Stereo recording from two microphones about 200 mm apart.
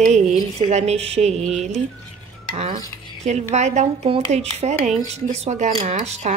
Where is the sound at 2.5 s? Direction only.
30° right (ahead or behind).